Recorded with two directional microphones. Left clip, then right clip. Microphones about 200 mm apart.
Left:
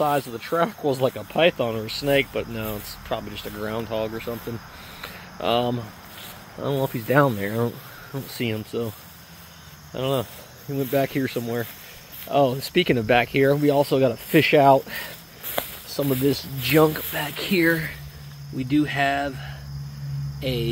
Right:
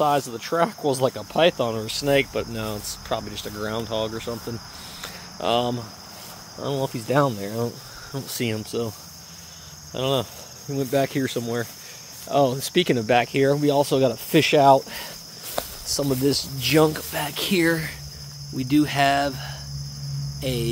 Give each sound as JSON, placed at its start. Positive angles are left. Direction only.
{"t": 0.0, "sound": "speech", "side_deg": -10}
{"t": 5.0, "sound": "a sound", "side_deg": 0}
{"t": 6.6, "sound": "speech", "side_deg": 10}
{"t": 8.1, "sound": "speech", "side_deg": -10}
{"t": 9.9, "sound": "speech", "side_deg": -10}
{"t": 20.3, "sound": "a sound", "side_deg": -10}